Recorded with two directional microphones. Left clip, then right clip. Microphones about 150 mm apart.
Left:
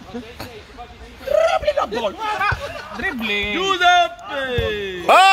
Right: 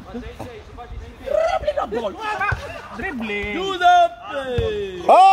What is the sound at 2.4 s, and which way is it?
Speech, 50° left (ahead or behind).